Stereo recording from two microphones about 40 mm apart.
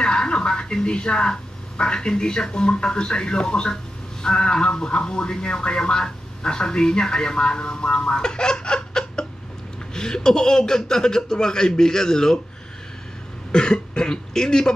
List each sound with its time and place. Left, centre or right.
0.0 s speech: left
13.5 s speech: left